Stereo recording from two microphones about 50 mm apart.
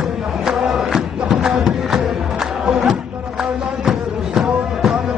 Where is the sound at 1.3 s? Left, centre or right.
Centre.